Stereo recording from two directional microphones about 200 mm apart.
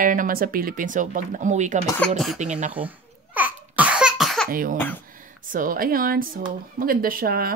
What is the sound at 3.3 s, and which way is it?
Cough, 10° right (ahead or behind).